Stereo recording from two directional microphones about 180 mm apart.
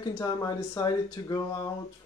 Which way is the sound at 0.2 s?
20° left (ahead or behind).